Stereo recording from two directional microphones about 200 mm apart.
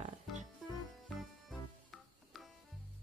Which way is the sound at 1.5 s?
Centre (ahead or behind).